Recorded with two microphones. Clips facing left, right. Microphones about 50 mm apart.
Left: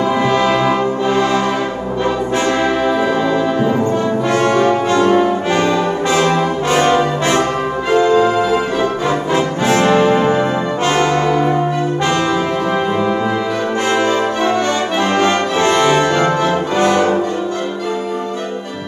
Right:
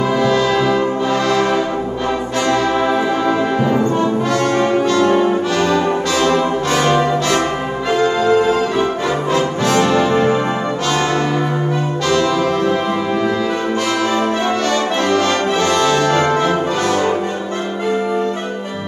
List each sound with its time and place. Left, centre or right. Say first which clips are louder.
0.1 s brass instrument: even; left
4.3 s brass instrument: left 6 dB; left
9.0 s brass instrument: left 1 dB; left
13.9 s brass instrument: left 2 dB; left